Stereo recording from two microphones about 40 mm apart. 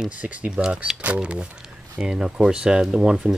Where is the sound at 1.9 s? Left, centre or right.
Centre.